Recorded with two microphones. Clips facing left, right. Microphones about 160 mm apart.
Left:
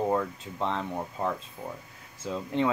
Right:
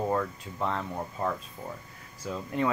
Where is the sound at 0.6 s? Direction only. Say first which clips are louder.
Left 1 dB; centre (ahead or behind).